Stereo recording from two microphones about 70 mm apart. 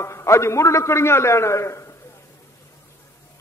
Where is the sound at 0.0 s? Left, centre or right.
Left.